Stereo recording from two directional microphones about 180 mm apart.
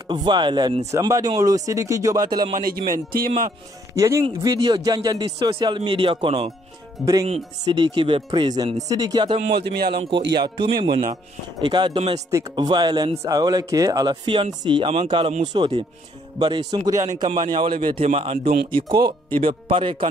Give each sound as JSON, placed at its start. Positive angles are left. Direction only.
{"t": 0.1, "sound": "speech", "side_deg": -25}
{"t": 2.5, "sound": "speech", "side_deg": -55}
{"t": 3.9, "sound": "speech", "side_deg": -20}
{"t": 7.6, "sound": "speech", "side_deg": -25}
{"t": 9.5, "sound": "speech", "side_deg": -65}
{"t": 10.4, "sound": "speech", "side_deg": -25}